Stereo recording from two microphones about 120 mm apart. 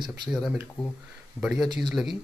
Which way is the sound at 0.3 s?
Centre (ahead or behind).